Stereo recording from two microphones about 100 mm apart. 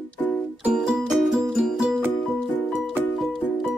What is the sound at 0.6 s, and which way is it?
Music, 5° right (ahead or behind).